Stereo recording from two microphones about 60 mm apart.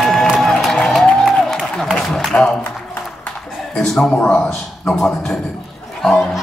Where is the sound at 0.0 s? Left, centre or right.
Centre.